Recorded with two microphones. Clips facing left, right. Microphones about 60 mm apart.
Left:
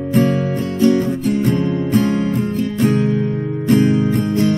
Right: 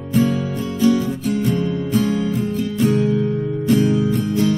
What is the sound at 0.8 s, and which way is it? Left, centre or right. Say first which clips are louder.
Music: left 2 dB; left.